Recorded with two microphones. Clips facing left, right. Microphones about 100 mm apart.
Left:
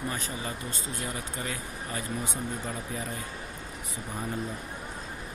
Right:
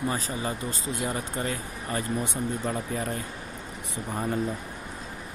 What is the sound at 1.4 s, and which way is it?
Speech, 45° right (ahead or behind).